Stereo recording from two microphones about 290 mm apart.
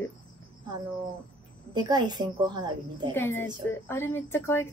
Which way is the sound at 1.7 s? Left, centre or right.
Centre.